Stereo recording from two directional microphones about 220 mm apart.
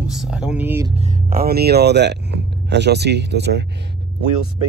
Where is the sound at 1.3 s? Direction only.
45° right (ahead or behind).